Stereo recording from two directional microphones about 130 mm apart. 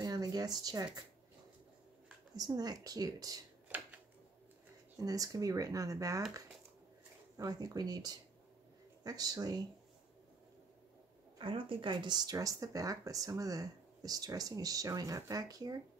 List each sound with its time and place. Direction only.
0.0 s a sound: 30° right (ahead or behind)
2.3 s speech: 30° right (ahead or behind)
3.6 s a sound: 15° right (ahead or behind)
5.0 s speech: 25° right (ahead or behind)
7.3 s speech: 30° right (ahead or behind)
11.3 s speech: 40° right (ahead or behind)